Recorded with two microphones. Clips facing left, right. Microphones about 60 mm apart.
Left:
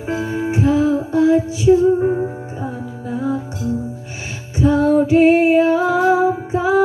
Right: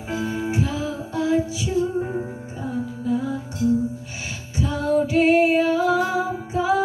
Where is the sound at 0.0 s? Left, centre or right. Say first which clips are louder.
Left 5 dB; left.